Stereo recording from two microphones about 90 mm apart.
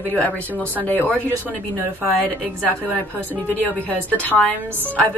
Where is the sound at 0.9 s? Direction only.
20° left (ahead or behind).